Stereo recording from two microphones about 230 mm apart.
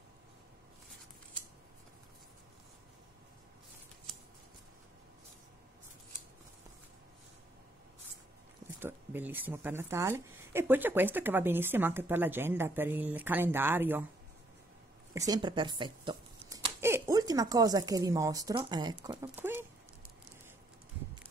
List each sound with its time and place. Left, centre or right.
8.7 s speech: centre
15.1 s a woman's voice: centre